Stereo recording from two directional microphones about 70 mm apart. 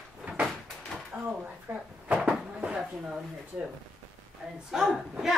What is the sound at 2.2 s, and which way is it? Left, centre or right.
Dishes, centre.